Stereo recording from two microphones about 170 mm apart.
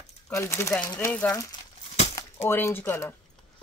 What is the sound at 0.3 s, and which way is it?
Speech, 15° left (ahead or behind).